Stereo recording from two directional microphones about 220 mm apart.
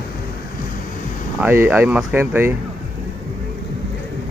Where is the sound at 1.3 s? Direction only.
10° right (ahead or behind).